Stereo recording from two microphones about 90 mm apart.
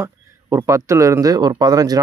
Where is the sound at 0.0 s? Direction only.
35° right (ahead or behind).